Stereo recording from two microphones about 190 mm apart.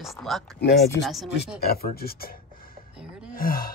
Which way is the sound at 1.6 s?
55° left (ahead or behind).